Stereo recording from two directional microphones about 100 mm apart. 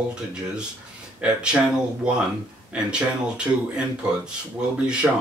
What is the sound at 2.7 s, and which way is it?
Speech, 10° right (ahead or behind).